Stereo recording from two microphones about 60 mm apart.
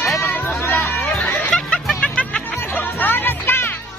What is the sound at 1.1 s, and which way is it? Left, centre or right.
Music, centre.